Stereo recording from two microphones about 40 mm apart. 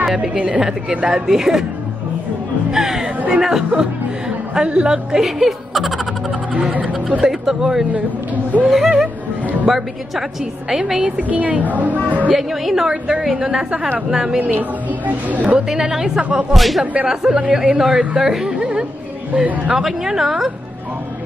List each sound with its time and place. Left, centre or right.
0.0 s a woman's voice: centre
2.7 s a woman's voice: centre
5.2 s a woman's voice: centre
11.1 s a woman's voice: right
12.4 s a woman's voice: centre
14.5 s a woman's voice: right
15.7 s a woman's voice: centre
16.2 s a woman's voice: right
16.5 s speech: centre
17.1 s a woman's voice: centre
19.7 s a woman's voice: centre